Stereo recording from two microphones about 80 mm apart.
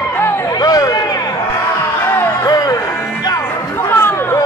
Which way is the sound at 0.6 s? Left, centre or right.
Left.